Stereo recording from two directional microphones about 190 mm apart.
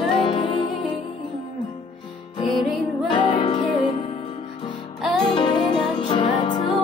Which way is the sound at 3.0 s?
30° left (ahead or behind).